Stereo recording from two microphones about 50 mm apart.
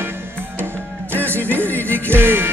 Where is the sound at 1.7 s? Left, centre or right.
Left.